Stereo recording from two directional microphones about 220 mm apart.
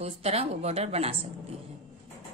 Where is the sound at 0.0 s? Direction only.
30° right (ahead or behind).